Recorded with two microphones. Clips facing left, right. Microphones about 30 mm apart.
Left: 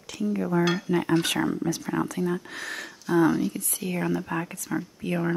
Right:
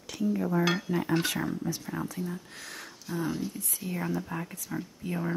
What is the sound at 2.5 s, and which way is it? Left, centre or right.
Speech, left.